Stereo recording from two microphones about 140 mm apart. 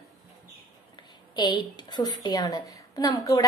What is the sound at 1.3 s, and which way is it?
A woman's voice, 30° left (ahead or behind).